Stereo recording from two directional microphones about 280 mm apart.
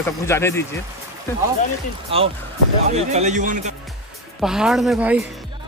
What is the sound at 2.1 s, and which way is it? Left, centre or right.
A man's voice, right.